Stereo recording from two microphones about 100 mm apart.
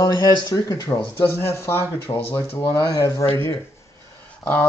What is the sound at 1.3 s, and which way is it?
Speech, 25° left (ahead or behind).